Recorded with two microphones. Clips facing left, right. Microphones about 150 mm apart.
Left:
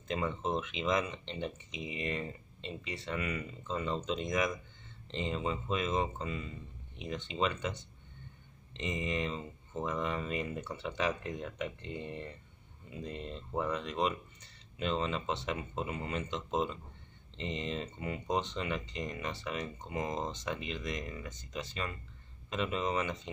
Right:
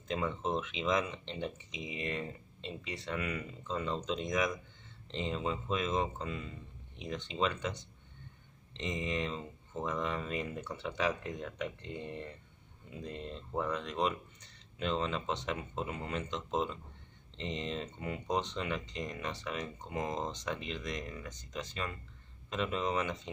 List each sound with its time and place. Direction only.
0.1 s speech: centre (ahead or behind)